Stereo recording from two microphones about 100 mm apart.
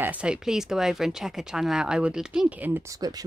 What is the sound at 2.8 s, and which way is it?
Speech, 35° right (ahead or behind).